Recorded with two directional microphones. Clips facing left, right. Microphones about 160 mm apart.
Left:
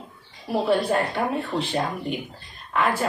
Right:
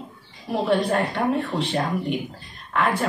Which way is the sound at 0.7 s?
Centre (ahead or behind).